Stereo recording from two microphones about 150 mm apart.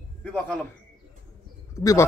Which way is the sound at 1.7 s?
20° left (ahead or behind).